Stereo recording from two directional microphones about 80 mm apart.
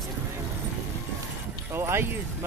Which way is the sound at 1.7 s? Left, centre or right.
Right.